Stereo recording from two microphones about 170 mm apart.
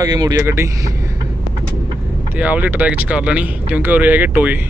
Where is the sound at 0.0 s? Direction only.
20° right (ahead or behind).